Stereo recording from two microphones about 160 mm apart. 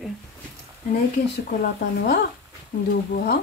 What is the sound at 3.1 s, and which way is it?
Speech, 80° left.